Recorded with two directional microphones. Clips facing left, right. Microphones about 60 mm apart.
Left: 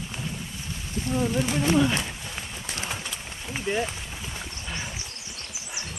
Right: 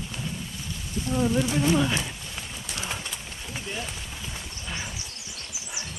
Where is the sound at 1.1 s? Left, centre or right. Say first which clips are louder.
Even; left.